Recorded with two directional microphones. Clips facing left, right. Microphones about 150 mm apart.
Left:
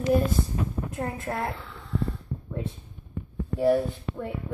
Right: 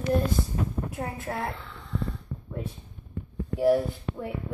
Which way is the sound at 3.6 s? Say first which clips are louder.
Even; 10° right (ahead or behind).